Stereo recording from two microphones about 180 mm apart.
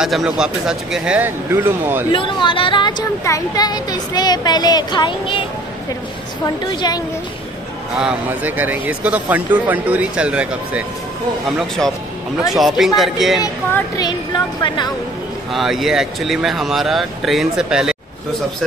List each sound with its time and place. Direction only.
0.0 s speech: 5° right (ahead or behind)
2.1 s speech: 30° left (ahead or behind)
6.4 s speech: 20° left (ahead or behind)
8.0 s speech: 5° right (ahead or behind)
13.9 s speech: 25° left (ahead or behind)
15.5 s speech: centre (ahead or behind)